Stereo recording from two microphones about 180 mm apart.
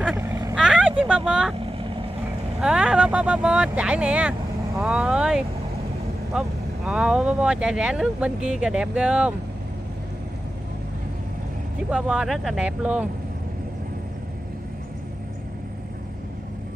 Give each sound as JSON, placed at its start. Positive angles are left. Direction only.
{"t": 0.0, "sound": "vehicle", "side_deg": -10}
{"t": 0.6, "sound": "vehicle", "side_deg": -5}
{"t": 1.7, "sound": "vehicle", "side_deg": -30}
{"t": 2.6, "sound": "speech", "side_deg": -5}
{"t": 11.9, "sound": "speech", "side_deg": -5}